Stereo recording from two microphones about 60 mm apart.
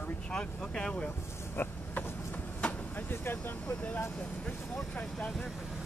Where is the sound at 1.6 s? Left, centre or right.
Left.